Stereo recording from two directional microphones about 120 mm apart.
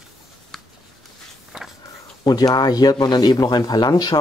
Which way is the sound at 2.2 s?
35° left (ahead or behind).